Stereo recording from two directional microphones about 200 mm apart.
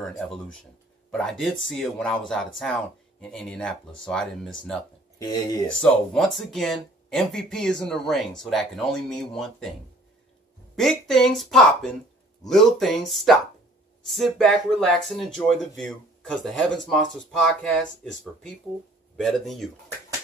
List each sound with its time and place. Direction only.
0.2 s speech: 5° left (ahead or behind)
5.2 s speech: 15° left (ahead or behind)
5.7 s speech: 5° left (ahead or behind)
10.8 s speech: centre (ahead or behind)